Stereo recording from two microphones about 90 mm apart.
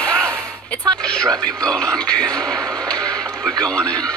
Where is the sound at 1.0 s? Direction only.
10° left (ahead or behind).